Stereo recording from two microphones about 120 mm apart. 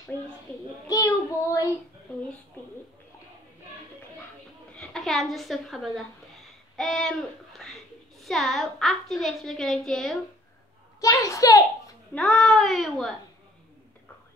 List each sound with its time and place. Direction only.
0.8 s child singing: 30° left (ahead or behind)
4.7 s a woman's voice: 5° left (ahead or behind)
11.0 s a woman's voice: 25° left (ahead or behind)
12.1 s a child's voice: 5° left (ahead or behind)